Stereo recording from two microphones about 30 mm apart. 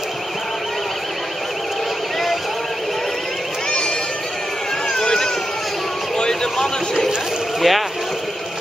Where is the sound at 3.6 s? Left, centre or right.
Left.